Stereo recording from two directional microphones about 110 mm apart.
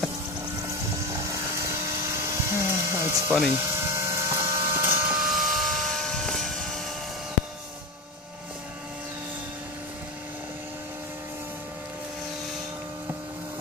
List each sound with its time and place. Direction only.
1.0 s helicopter: 30° right (ahead or behind)
3.5 s a sound: 25° right (ahead or behind)
5.1 s vehicle: centre (ahead or behind)